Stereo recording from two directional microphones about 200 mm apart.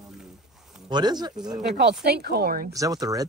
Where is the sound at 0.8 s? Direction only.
20° right (ahead or behind).